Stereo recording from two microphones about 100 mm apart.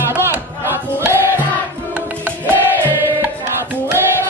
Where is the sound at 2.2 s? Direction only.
20° right (ahead or behind).